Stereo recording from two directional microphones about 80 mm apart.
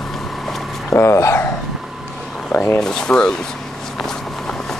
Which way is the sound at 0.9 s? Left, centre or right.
Left.